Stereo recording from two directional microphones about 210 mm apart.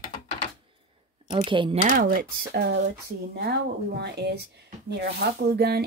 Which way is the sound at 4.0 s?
50° right (ahead or behind).